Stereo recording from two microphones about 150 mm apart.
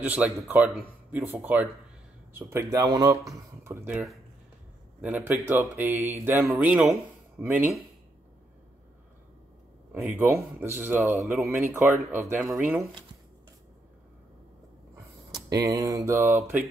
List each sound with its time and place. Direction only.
0.0 s speech: 10° right (ahead or behind)
5.0 s speech: 10° right (ahead or behind)
9.9 s speech: 15° right (ahead or behind)
15.3 s speech: 25° right (ahead or behind)